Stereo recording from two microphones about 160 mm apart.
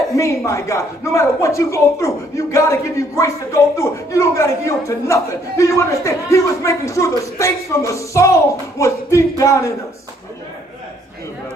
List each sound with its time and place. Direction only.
0.1 s speech: 20° left (ahead or behind)